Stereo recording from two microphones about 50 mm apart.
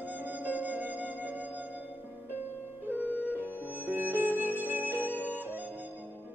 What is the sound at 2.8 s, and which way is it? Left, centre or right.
Music, right.